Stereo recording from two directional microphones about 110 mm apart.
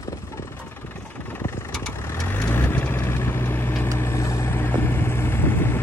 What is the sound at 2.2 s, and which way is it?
Vehicle, 20° left (ahead or behind).